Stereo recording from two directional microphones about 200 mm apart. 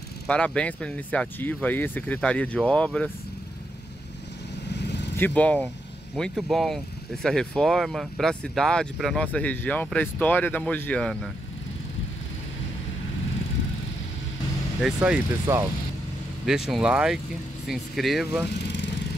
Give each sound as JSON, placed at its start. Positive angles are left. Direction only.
{"t": 0.3, "sound": "speech", "side_deg": 5}
{"t": 4.8, "sound": "vehicle", "side_deg": 60}
{"t": 5.1, "sound": "speech", "side_deg": 10}
{"t": 14.8, "sound": "speech", "side_deg": -5}
{"t": 16.4, "sound": "speech", "side_deg": 0}